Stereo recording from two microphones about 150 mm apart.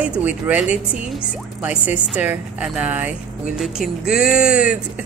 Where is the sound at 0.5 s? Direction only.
5° right (ahead or behind).